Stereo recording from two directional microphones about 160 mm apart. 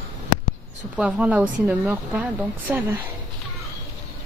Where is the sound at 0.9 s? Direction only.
5° right (ahead or behind).